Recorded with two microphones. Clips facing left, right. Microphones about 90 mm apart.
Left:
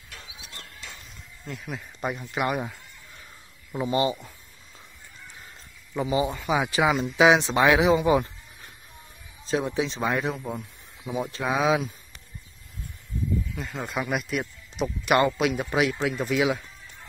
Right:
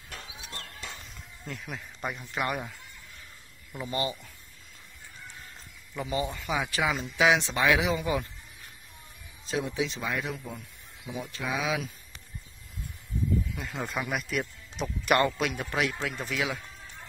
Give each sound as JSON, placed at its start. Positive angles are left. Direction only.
{"t": 1.4, "sound": "speech", "side_deg": 0}
{"t": 3.7, "sound": "speech", "side_deg": 25}
{"t": 6.0, "sound": "speech", "side_deg": 10}
{"t": 9.5, "sound": "speech", "side_deg": 40}
{"t": 13.6, "sound": "speech", "side_deg": 0}